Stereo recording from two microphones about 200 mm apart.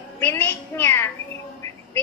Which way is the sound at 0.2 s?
10° left (ahead or behind).